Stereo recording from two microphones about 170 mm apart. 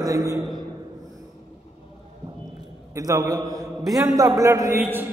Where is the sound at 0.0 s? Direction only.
20° right (ahead or behind).